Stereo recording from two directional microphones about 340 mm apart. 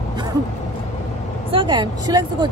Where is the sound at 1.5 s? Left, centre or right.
Centre.